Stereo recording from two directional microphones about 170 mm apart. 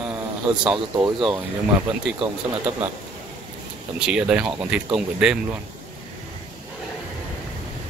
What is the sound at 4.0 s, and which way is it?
Speech, 5° right (ahead or behind).